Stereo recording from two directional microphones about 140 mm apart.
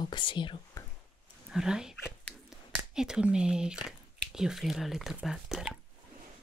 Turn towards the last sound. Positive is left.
turn(degrees=-5)  # may be behind; listen again after turning